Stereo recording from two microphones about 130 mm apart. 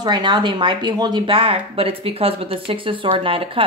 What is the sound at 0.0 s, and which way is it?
Speech, 35° right (ahead or behind).